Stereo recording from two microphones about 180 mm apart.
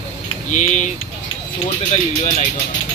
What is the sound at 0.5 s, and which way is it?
Speech, 45° left (ahead or behind).